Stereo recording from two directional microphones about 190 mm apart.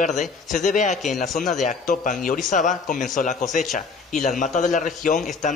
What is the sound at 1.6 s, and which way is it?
A man's voice, 40° left (ahead or behind).